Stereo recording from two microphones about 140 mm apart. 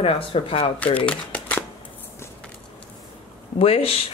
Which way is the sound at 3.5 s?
45° left (ahead or behind).